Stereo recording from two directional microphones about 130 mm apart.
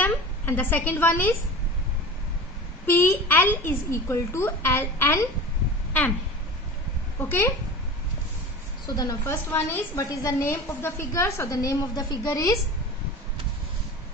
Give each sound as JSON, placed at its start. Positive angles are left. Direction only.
{"t": 0.0, "sound": "a woman's voice", "side_deg": 15}
{"t": 2.9, "sound": "a child's voice", "side_deg": 15}
{"t": 7.2, "sound": "a child's voice", "side_deg": 15}
{"t": 8.8, "sound": "a woman's voice", "side_deg": 30}
{"t": 9.3, "sound": "a woman's voice", "side_deg": 15}